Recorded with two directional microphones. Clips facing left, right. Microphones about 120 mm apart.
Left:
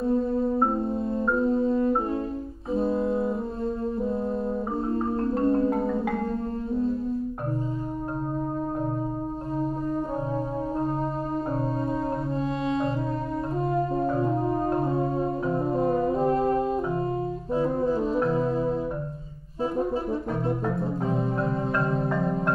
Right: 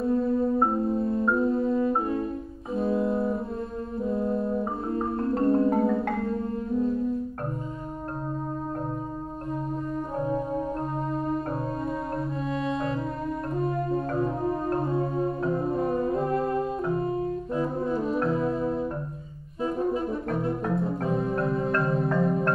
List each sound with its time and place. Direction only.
0.8 s music: 30° left (ahead or behind)
1.2 s music: centre (ahead or behind)
1.5 s music: 30° left (ahead or behind)
3.0 s brass instrument: centre (ahead or behind)
4.9 s marimba: centre (ahead or behind)
12.6 s music: 25° left (ahead or behind)
15.5 s music: 25° left (ahead or behind)
17.6 s brass instrument: 30° left (ahead or behind)
21.4 s music: centre (ahead or behind)
21.9 s marimba: centre (ahead or behind)